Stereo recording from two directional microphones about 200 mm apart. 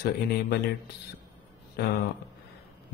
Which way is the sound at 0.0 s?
50° left (ahead or behind).